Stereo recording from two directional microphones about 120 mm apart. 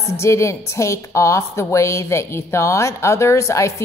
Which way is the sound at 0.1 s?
25° left (ahead or behind).